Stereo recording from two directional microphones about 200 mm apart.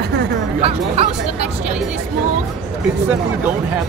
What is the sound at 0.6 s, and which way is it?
Speech, 30° right (ahead or behind).